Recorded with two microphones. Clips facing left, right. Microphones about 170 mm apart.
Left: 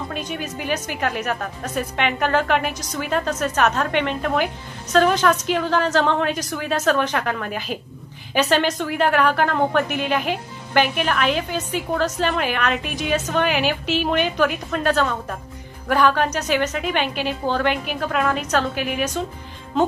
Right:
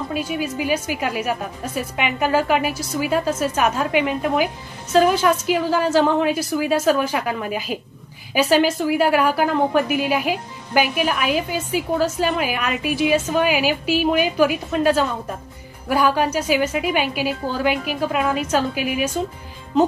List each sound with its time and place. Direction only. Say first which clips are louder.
0.1 s a woman's voice: right 4 dB; 5° right (ahead or behind)